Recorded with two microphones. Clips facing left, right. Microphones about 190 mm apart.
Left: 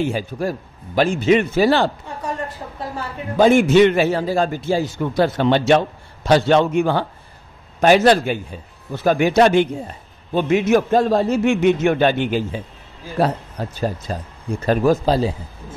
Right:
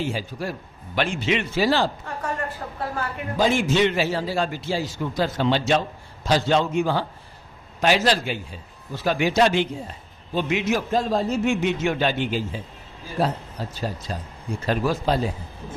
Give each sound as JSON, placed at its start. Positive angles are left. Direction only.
{"t": 0.0, "sound": "a man's voice", "side_deg": 50}
{"t": 3.3, "sound": "a man's voice", "side_deg": 55}